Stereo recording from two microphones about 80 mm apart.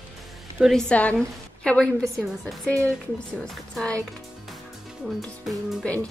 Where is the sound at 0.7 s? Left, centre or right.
Centre.